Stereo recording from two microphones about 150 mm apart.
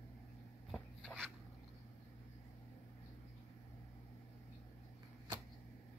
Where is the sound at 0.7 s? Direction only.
Centre (ahead or behind).